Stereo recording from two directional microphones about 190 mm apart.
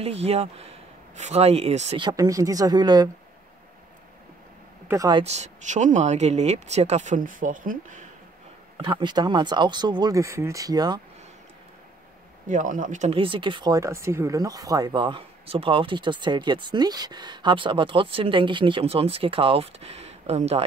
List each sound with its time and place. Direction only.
0.0 s speech: 35° right (ahead or behind)
2.0 s speech: 20° right (ahead or behind)
4.8 s speech: 20° right (ahead or behind)
5.2 s speech: 35° right (ahead or behind)
8.7 s speech: 25° right (ahead or behind)
12.4 s speech: 45° right (ahead or behind)
13.1 s speech: 25° right (ahead or behind)